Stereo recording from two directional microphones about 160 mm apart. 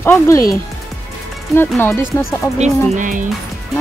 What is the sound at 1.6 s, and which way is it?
Speech, 15° left (ahead or behind).